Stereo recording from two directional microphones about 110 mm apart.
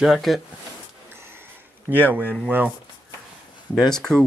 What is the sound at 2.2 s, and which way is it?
Speech, 10° left (ahead or behind).